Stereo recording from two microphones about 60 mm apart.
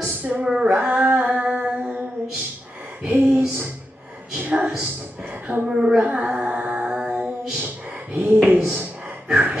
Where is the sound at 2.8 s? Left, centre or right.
Right.